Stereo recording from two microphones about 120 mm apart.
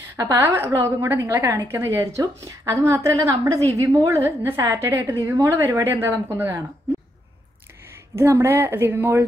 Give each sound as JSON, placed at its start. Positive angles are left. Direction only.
{"t": 0.1, "sound": "a woman's voice", "side_deg": -20}
{"t": 8.2, "sound": "a woman's voice", "side_deg": -20}